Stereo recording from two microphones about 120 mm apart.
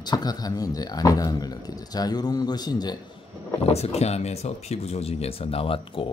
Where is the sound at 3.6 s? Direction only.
60° left (ahead or behind).